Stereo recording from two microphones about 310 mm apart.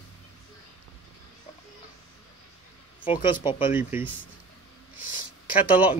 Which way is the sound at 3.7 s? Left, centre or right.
Centre.